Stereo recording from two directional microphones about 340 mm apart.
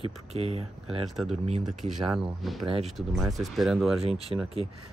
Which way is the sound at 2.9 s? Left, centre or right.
Centre.